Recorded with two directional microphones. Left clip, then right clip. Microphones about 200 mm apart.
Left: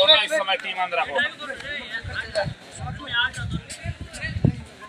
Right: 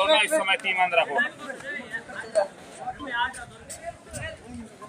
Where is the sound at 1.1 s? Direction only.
30° left (ahead or behind).